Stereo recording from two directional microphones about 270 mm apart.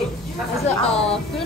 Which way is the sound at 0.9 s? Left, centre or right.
Left.